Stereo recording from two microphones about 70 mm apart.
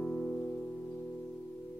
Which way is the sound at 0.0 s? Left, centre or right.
Left.